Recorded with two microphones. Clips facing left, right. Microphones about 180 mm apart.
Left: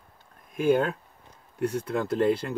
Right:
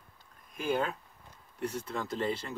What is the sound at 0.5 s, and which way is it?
Speech, 55° left (ahead or behind).